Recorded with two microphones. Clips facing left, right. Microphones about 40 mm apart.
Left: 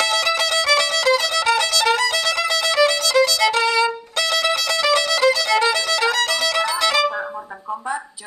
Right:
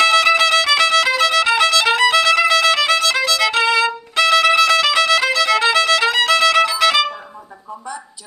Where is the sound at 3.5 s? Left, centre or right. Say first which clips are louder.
Right 2 dB; right.